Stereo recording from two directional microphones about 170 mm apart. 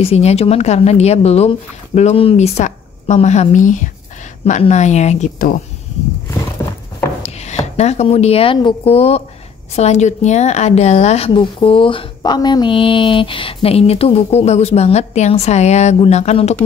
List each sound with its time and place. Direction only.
0.0 s a woman's voice: 40° left (ahead or behind)
7.2 s a woman's voice: 40° left (ahead or behind)